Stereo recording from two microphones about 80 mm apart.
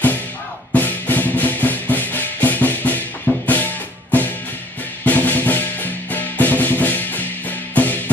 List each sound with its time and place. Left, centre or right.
0.7 s music: left